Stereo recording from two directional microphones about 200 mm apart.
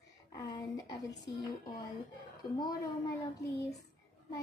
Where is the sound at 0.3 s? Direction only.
15° left (ahead or behind).